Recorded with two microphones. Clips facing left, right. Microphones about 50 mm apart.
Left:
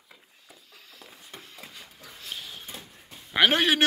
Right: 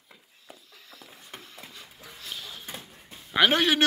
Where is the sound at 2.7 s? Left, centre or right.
Centre.